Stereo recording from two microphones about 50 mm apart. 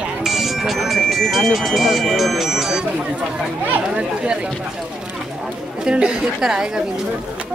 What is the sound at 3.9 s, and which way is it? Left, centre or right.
Speech, centre.